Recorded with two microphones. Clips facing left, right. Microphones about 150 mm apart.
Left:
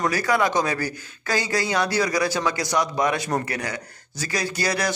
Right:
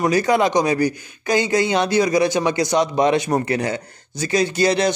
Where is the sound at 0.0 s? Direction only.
20° right (ahead or behind).